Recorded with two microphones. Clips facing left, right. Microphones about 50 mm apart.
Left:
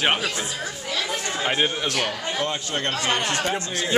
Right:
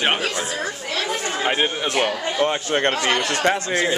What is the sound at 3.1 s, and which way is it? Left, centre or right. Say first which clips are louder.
Speech: right 2 dB; left.